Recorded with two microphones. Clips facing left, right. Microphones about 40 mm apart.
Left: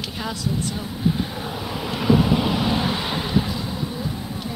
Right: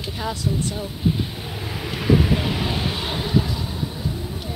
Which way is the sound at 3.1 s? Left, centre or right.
Centre.